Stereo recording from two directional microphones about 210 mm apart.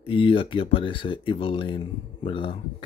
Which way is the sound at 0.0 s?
25° left (ahead or behind).